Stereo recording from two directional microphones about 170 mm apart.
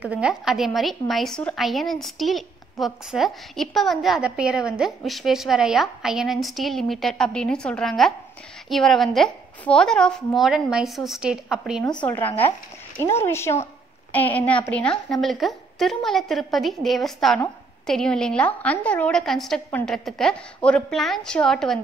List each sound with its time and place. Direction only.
0.0 s a woman's voice: 5° right (ahead or behind)
11.8 s a woman's voice: 25° left (ahead or behind)
12.4 s a woman's voice: 15° left (ahead or behind)